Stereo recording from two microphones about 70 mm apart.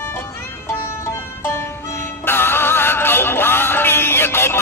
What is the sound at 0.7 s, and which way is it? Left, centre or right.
Music, left.